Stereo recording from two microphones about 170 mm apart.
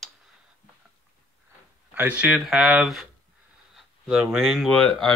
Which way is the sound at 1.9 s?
10° right (ahead or behind).